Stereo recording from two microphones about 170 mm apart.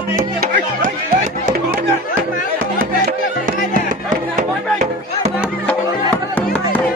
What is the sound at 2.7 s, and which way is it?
Music, 55° right (ahead or behind).